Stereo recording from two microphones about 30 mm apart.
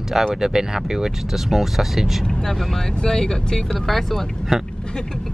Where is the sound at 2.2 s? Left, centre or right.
Centre.